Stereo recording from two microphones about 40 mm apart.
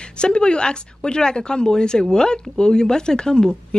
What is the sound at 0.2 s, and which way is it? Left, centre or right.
Speech, left.